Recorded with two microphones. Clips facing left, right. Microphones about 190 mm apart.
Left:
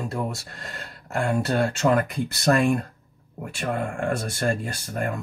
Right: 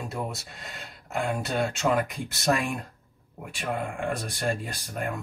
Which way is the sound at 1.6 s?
Centre (ahead or behind).